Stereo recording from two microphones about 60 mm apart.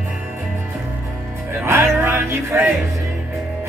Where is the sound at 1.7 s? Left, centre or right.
Right.